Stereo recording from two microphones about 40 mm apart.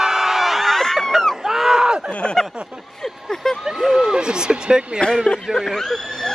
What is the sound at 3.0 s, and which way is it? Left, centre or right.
Speech, centre.